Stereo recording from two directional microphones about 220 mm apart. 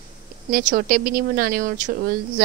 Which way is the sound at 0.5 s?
40° right (ahead or behind).